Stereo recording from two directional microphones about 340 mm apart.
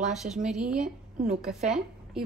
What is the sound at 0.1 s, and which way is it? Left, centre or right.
A woman's voice, centre.